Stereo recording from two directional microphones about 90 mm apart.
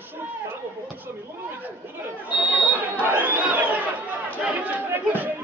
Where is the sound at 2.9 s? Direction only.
20° right (ahead or behind).